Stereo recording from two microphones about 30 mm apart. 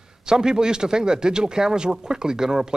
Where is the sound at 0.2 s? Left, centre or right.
Right.